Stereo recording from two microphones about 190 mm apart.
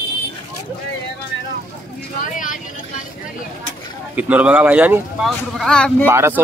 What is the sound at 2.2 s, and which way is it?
Vehicle, 45° left (ahead or behind).